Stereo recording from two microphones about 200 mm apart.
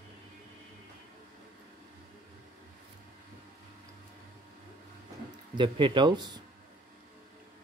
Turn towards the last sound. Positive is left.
turn(degrees=-20)  # may be behind; listen again after turning